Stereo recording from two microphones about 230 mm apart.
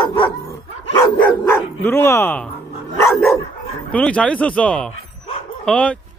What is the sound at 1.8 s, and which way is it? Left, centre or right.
Speech, centre.